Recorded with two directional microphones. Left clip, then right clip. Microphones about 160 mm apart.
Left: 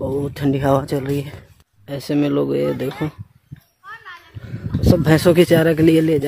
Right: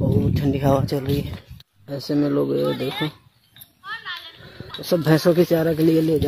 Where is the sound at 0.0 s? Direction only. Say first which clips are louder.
Left 2 dB; 30° left (ahead or behind).